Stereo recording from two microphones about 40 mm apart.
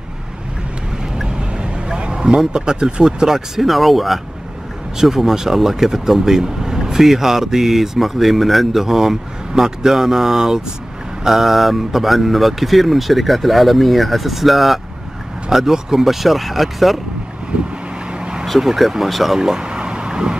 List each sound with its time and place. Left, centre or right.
1.1 s speech: right; by 17.0 s centre
18.6 s speech: centre
19.4 s a sound: centre